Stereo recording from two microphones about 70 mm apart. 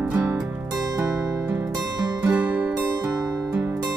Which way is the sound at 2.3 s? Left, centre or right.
Right.